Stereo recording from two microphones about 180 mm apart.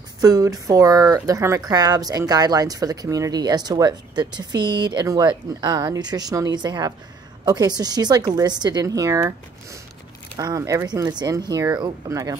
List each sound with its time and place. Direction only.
0.2 s speech: 20° right (ahead or behind)